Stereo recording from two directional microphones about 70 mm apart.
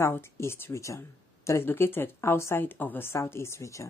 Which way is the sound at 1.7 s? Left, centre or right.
Left.